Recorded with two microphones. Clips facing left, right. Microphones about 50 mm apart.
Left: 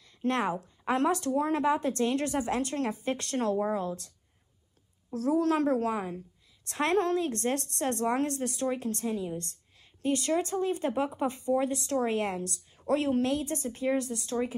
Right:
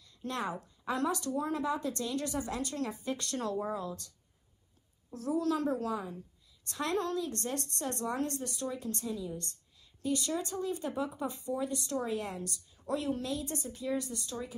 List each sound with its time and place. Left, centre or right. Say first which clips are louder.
0.0 s a sound: left 7 dB; left
0.8 s speech: left 6 dB; left
5.1 s speech: left 5 dB; left